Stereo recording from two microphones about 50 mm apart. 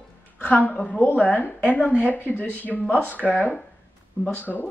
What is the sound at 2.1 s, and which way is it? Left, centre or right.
Speech, left.